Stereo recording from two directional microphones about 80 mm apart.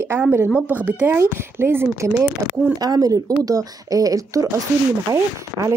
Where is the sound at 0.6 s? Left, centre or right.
Right.